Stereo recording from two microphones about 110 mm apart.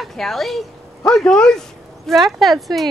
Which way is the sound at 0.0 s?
5° left (ahead or behind).